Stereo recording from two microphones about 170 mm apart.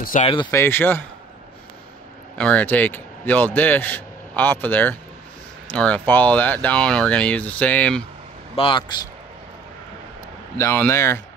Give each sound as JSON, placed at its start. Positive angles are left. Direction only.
{"t": 0.0, "sound": "speech", "side_deg": 45}
{"t": 0.5, "sound": "speech", "side_deg": 15}
{"t": 2.3, "sound": "a man's voice", "side_deg": 5}
{"t": 8.5, "sound": "a man's voice", "side_deg": 30}
{"t": 10.6, "sound": "speech", "side_deg": 15}